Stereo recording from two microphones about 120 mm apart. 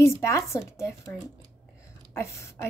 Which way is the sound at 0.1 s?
25° left (ahead or behind).